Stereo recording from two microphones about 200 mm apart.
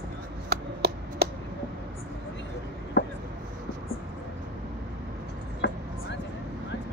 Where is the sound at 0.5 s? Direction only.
55° right (ahead or behind).